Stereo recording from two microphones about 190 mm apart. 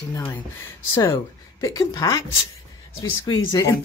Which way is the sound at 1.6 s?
20° left (ahead or behind).